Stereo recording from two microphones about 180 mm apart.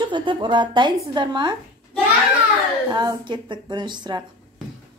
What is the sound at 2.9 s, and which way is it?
A woman's voice, 25° right (ahead or behind).